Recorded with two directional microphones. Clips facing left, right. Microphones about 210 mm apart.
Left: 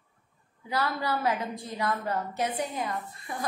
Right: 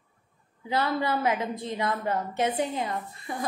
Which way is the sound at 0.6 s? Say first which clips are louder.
Right 3 dB; 25° right (ahead or behind).